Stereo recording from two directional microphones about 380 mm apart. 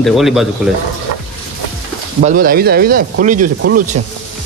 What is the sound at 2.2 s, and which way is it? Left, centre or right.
Speech, right.